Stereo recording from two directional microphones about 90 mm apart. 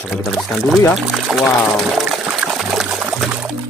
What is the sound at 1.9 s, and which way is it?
Trickle, 5° right (ahead or behind).